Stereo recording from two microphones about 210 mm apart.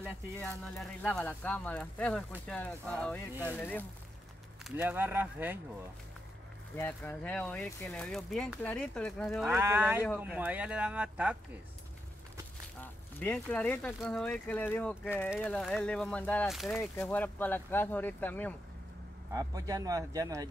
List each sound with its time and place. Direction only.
0.4 s speech: 5° left (ahead or behind)
4.6 s speech: 10° right (ahead or behind)
6.8 s speech: 10° left (ahead or behind)
12.8 s speech: 10° left (ahead or behind)
19.3 s speech: 15° right (ahead or behind)